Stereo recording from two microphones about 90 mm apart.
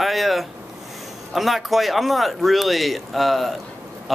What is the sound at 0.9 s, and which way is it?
Speech, centre (ahead or behind).